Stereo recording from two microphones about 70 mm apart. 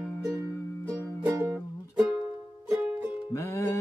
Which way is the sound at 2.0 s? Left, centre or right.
Centre.